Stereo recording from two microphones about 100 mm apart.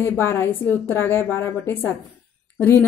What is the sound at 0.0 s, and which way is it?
A woman's voice, 20° left (ahead or behind).